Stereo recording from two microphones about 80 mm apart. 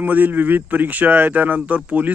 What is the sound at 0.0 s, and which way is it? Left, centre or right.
Speech, right.